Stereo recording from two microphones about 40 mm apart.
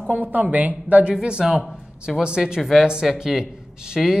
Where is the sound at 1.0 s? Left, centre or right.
Right.